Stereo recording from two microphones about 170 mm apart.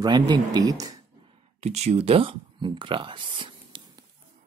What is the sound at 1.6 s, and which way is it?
Speech, 40° right (ahead or behind).